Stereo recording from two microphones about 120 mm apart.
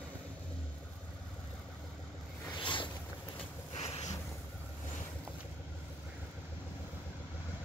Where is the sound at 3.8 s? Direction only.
65° left (ahead or behind).